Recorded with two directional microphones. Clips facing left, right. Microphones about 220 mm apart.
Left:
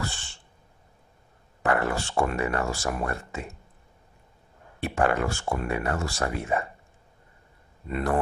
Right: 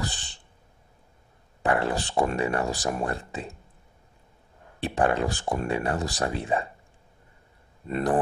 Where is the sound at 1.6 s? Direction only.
15° right (ahead or behind).